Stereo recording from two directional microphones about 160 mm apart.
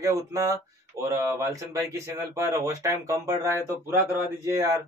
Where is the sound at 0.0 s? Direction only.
20° right (ahead or behind).